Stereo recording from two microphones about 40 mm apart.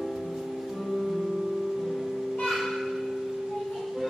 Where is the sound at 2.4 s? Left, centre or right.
Centre.